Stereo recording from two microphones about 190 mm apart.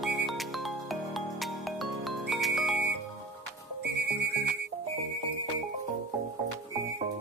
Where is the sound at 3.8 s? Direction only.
60° right (ahead or behind).